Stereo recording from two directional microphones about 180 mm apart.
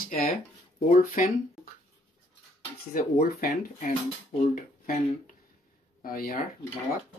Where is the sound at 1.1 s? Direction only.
50° left (ahead or behind).